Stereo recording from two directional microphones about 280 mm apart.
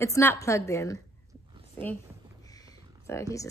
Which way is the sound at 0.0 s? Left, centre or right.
Centre.